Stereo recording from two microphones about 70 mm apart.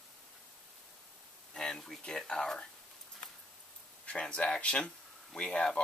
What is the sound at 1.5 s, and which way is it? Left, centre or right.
Speech, centre.